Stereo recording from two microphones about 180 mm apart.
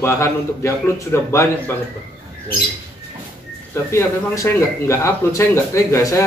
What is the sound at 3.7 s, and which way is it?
A man's voice, 15° left (ahead or behind).